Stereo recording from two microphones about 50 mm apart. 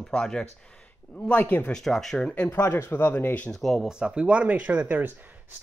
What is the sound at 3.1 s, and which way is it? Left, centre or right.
Speech, left.